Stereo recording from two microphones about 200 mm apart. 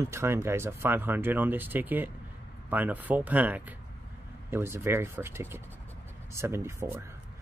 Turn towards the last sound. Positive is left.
turn(degrees=-10)  # may be behind; listen again after turning